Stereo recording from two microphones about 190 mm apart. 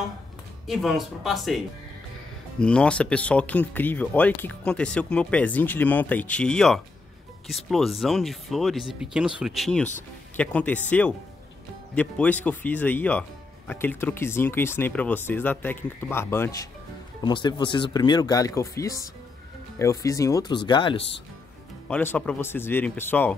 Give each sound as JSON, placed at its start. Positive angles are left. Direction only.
{"t": 0.7, "sound": "speech", "side_deg": 0}
{"t": 2.6, "sound": "speech", "side_deg": 5}
{"t": 21.8, "sound": "speech", "side_deg": 10}